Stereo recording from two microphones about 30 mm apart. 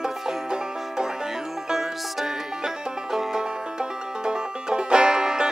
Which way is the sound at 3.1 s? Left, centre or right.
Centre.